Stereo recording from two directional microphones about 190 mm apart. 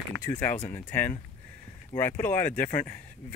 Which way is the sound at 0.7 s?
10° left (ahead or behind).